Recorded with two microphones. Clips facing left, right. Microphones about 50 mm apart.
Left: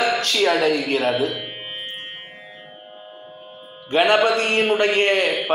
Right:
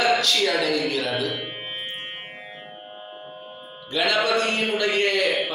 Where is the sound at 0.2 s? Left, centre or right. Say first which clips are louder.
Left 4 dB; left.